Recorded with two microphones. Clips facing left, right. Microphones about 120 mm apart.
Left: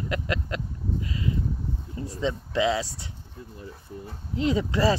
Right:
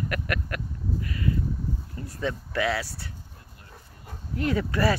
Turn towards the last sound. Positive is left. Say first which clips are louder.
# left 2 dB
turn(degrees=20)  # may be behind; listen again after turning